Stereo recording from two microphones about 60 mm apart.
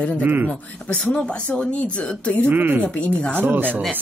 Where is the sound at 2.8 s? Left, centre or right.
Left.